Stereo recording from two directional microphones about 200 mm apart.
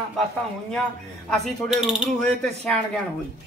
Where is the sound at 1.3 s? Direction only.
Centre (ahead or behind).